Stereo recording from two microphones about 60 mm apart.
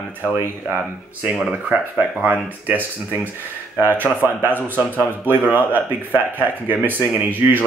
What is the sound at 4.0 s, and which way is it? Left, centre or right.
Speech, right.